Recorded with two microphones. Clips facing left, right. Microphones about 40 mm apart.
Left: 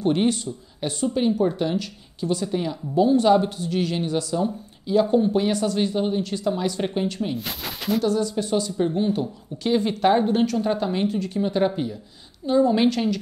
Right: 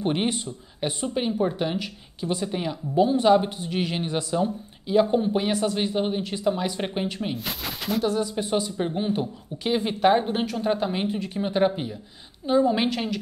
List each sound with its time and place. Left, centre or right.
0.0 s speech: centre
7.3 s speech: centre
8.0 s speech: centre